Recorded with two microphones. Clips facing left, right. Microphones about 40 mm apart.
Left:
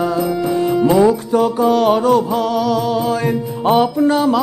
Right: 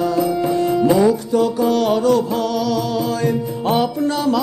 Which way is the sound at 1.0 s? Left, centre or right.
Left.